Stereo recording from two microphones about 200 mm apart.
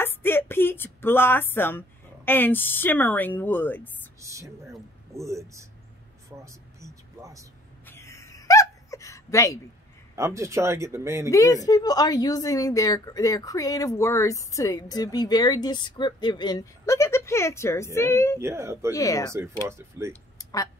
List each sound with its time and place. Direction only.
0.0 s speech: 10° left (ahead or behind)
4.2 s speech: 15° right (ahead or behind)
6.4 s vehicle: 15° right (ahead or behind)
7.8 s a sound: 10° left (ahead or behind)
10.1 s speech: 15° right (ahead or behind)
11.2 s a woman's voice: 15° left (ahead or behind)
18.4 s speech: 15° right (ahead or behind)
18.9 s a woman's voice: 15° left (ahead or behind)
19.3 s speech: 15° right (ahead or behind)
20.3 s a sound: 15° left (ahead or behind)